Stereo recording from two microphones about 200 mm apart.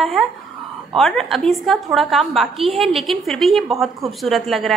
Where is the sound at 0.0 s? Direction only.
Centre (ahead or behind).